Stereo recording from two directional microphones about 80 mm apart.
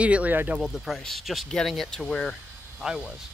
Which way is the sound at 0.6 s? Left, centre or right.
Centre.